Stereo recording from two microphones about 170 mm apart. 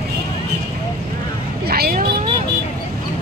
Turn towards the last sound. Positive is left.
turn(degrees=-65)  # may be behind; listen again after turning